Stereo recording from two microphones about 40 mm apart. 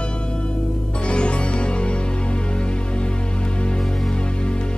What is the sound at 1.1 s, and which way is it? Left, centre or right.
Music, left.